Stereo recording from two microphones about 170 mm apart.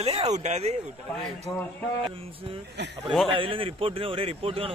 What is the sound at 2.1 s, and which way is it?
A man's voice, 35° right (ahead or behind).